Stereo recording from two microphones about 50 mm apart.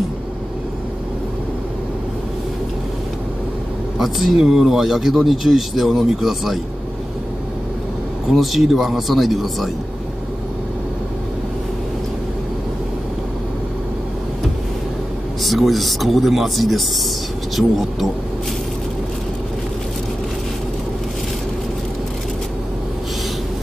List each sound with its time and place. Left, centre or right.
4.0 s speech: centre
8.4 s speech: centre
15.4 s speech: centre